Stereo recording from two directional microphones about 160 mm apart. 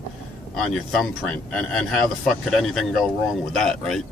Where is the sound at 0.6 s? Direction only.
Centre (ahead or behind).